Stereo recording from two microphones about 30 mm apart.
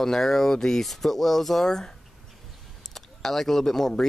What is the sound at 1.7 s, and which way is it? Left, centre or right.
Speech, centre.